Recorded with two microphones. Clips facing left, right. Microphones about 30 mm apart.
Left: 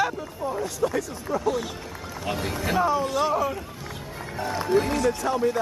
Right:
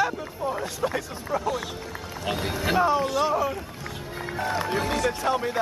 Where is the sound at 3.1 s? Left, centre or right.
Centre.